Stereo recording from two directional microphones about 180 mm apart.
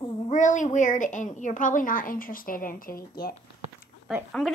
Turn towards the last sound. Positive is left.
turn(degrees=0)  # may be behind; listen again after turning